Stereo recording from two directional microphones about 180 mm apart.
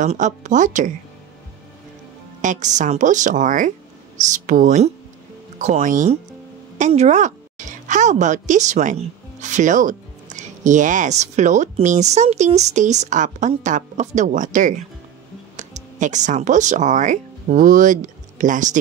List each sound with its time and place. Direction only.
0.0 s speech: 40° right (ahead or behind)
2.4 s a woman's voice: 45° right (ahead or behind)